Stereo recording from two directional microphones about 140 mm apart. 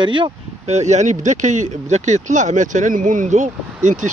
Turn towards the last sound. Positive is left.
turn(degrees=-65)  # may be behind; listen again after turning